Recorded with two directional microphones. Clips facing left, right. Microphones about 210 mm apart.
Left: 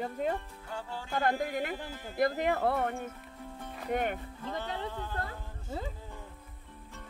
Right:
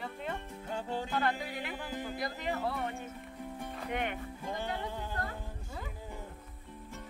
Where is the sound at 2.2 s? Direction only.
55° left (ahead or behind).